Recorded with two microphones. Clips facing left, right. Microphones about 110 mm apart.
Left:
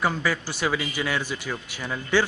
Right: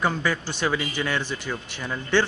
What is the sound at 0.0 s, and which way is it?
Speech, 5° left (ahead or behind).